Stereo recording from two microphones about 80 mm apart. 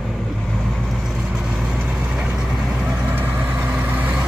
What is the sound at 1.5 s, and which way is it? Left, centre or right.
Vehicle, centre.